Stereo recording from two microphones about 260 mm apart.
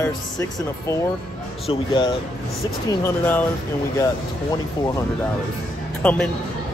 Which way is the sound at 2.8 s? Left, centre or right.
Centre.